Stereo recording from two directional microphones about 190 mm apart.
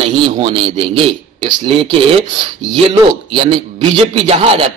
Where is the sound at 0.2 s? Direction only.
30° right (ahead or behind).